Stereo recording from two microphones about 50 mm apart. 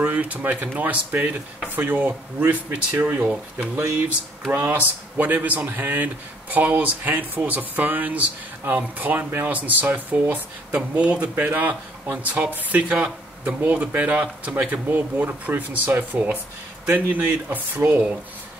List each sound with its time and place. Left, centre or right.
0.0 s speech: right
1.8 s speech: right
4.6 s speech: right
11.4 s speech: right
14.9 s speech: right